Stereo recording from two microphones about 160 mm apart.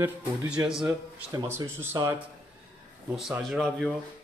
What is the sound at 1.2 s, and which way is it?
Speech, 20° right (ahead or behind).